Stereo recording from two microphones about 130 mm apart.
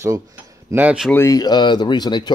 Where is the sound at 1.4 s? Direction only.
35° left (ahead or behind).